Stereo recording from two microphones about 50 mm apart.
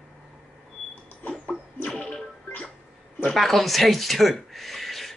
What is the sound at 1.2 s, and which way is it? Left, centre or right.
Rodents, left.